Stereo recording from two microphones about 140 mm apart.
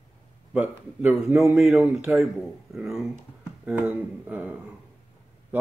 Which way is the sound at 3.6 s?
15° right (ahead or behind).